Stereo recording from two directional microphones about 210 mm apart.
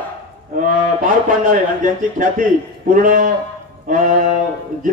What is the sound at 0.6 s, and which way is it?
Speech, 40° right (ahead or behind).